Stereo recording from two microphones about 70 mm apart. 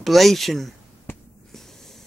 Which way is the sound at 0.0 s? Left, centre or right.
Centre.